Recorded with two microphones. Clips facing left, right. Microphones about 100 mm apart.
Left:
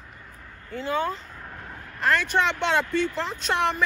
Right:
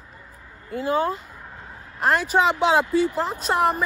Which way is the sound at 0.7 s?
40° right (ahead or behind).